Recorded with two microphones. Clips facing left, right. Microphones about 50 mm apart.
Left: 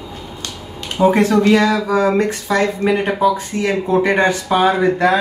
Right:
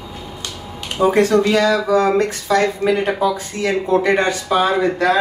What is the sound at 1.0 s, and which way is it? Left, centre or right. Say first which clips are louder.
Speech: left 1 dB; left.